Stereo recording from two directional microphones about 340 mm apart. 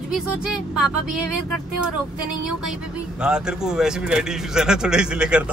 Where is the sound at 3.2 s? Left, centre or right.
Centre.